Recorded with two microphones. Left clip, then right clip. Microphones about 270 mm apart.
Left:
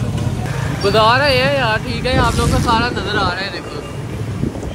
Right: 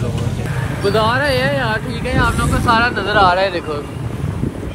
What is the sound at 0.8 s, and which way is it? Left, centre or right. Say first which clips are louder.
Speech: left 3 dB; centre.